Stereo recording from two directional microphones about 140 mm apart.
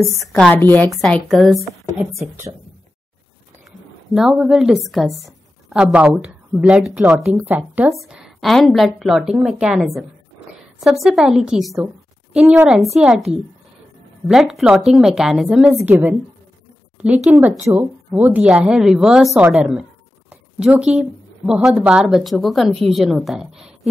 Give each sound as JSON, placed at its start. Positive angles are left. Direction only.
{"t": 0.1, "sound": "a woman's voice", "side_deg": 0}
{"t": 0.5, "sound": "a woman's voice", "side_deg": 15}
{"t": 1.0, "sound": "a woman's voice", "side_deg": 0}
{"t": 2.1, "sound": "speech", "side_deg": -20}
{"t": 4.1, "sound": "a woman's voice", "side_deg": -5}
{"t": 7.9, "sound": "a woman's voice", "side_deg": 0}
{"t": 15.7, "sound": "speech", "side_deg": -15}